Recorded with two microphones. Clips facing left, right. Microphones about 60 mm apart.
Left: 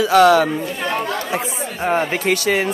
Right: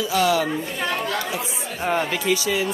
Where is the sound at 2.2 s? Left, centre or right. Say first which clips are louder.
Left 4 dB; left.